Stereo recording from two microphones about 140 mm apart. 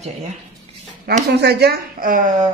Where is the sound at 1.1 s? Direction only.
90° right.